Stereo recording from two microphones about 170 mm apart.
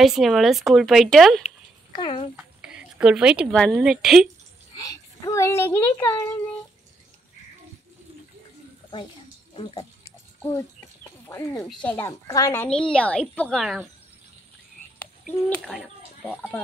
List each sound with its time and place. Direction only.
0.0 s speech: centre (ahead or behind)
2.0 s speech: 35° left (ahead or behind)
2.3 s a sound: 5° right (ahead or behind)
3.7 s speech: 5° right (ahead or behind)
4.8 s a woman's voice: 20° left (ahead or behind)
11.2 s a woman's voice: 15° left (ahead or behind)
12.1 s a woman's voice: 20° left (ahead or behind)
12.6 s speech: 5° left (ahead or behind)
15.5 s speech: centre (ahead or behind)